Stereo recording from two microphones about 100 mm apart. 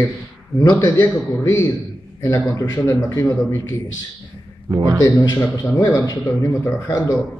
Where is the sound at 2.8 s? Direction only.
25° left (ahead or behind).